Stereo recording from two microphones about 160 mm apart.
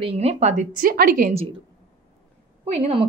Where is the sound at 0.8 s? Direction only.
65° right (ahead or behind).